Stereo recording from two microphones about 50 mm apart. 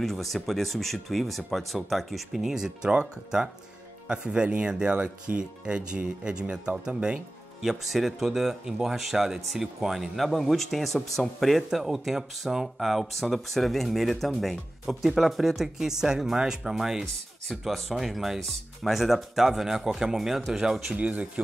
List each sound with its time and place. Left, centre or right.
0.0 s speech: centre
7.6 s speech: centre
17.0 s speech: centre
20.9 s speech: right